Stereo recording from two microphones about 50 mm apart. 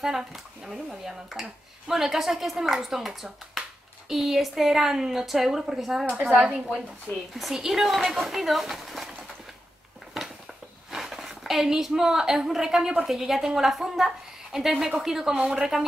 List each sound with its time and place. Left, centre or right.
0.0 s a woman's voice: centre
6.0 s a woman's voice: right
6.4 s a woman's voice: centre
10.9 s a woman's voice: centre